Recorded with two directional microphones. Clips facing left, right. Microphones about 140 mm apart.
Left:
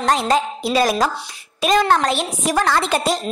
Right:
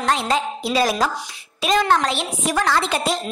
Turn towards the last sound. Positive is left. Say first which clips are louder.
# left 2 dB
turn(degrees=45)  # may be behind; listen again after turning